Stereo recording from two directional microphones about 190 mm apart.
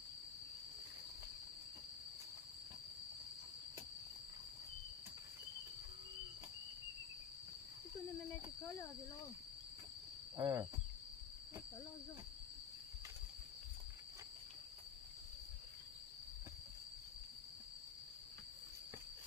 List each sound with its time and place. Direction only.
10.3 s wild animals: 20° right (ahead or behind)